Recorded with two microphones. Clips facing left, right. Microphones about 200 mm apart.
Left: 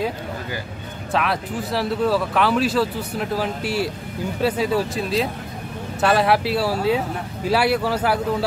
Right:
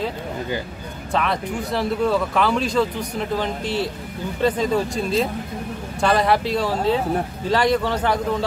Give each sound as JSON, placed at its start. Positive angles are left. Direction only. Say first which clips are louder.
{"t": 1.1, "sound": "a man's voice", "louder": "even", "side_deg": 5}